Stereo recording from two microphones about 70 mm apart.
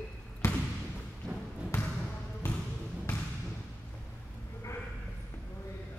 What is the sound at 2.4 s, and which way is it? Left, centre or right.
Basketball bounce, left.